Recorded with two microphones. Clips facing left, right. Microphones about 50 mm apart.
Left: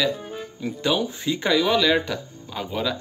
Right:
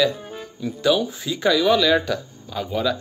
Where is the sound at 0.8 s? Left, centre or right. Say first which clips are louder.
Right 3 dB; left.